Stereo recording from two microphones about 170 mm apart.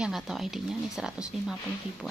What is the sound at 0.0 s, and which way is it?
A woman's voice, centre (ahead or behind).